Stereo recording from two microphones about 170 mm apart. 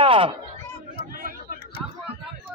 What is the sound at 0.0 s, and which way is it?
Chatter, 30° right (ahead or behind).